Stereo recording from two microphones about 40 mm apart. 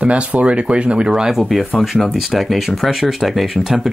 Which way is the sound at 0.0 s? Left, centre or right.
Right.